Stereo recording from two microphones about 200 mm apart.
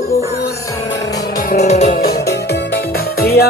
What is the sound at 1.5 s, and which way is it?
Music, 35° left (ahead or behind).